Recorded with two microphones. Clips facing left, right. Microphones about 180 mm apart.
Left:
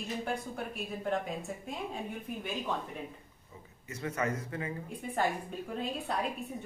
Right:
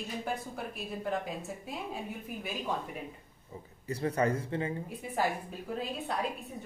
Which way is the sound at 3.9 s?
35° right (ahead or behind).